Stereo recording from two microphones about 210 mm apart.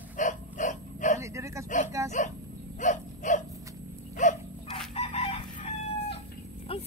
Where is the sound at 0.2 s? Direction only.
35° left (ahead or behind).